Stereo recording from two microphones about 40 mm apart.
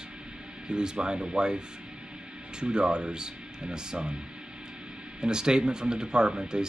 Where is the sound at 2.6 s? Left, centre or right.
Right.